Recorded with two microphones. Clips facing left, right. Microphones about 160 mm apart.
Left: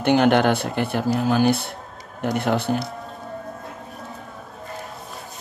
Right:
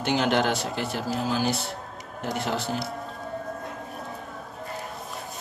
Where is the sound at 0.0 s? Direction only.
55° left (ahead or behind).